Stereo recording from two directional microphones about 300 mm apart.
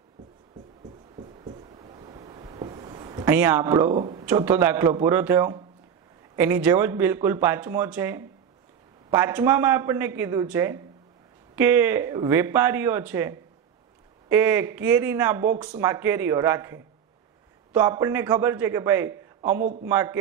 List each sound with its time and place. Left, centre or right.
1.1 s a sound: centre
3.9 s speech: centre
19.6 s a man's voice: right
19.9 s speech: centre